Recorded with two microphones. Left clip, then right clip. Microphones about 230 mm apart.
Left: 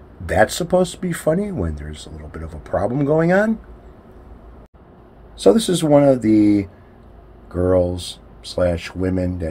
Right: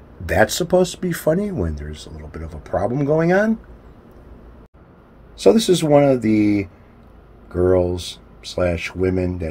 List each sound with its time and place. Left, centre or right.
0.3 s speech: centre
5.4 s speech: centre